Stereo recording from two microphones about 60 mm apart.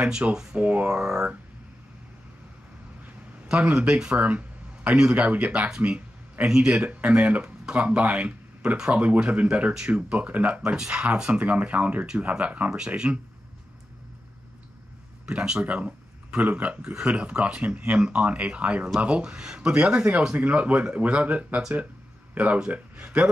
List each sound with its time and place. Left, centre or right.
0.0 s speech: centre
3.4 s speech: centre
15.2 s speech: centre
15.6 s speech: right